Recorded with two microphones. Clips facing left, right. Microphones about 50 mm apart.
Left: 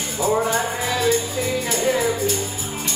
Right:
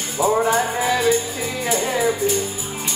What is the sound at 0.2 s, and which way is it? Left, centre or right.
Music, centre.